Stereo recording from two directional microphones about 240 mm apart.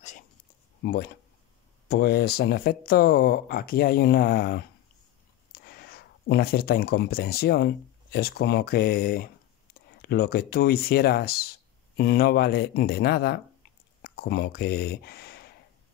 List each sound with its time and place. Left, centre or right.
0.8 s speech: left